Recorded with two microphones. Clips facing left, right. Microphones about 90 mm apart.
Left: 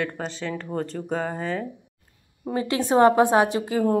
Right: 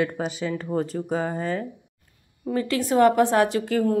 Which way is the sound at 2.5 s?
20° left (ahead or behind).